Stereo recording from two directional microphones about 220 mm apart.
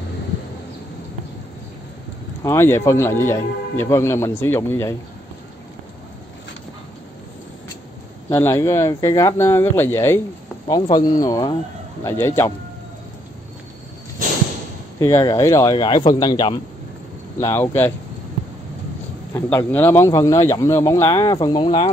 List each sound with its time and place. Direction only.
2.4 s speech: 10° left (ahead or behind)
8.3 s speech: 10° left (ahead or behind)
15.0 s speech: 15° left (ahead or behind)
19.3 s speech: 10° left (ahead or behind)